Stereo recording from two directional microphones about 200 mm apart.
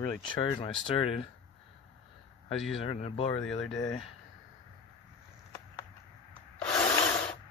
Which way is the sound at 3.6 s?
Centre (ahead or behind).